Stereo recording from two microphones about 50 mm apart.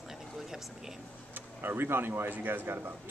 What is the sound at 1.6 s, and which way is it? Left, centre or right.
Speech, right.